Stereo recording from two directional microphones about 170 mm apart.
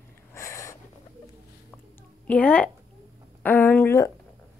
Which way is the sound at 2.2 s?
10° left (ahead or behind).